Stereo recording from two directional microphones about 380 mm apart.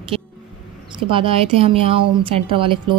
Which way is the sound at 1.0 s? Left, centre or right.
Centre.